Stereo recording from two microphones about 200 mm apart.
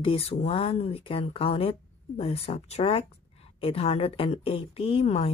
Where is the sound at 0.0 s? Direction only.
30° left (ahead or behind).